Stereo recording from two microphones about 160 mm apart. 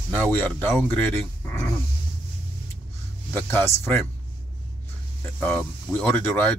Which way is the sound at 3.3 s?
10° left (ahead or behind).